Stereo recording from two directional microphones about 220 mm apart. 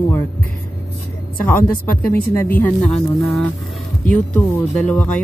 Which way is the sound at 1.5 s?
10° left (ahead or behind).